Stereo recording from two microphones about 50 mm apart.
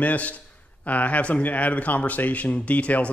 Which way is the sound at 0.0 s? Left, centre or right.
Left.